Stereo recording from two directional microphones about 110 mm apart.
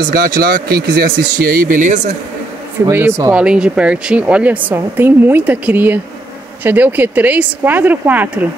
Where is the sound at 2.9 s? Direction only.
20° right (ahead or behind).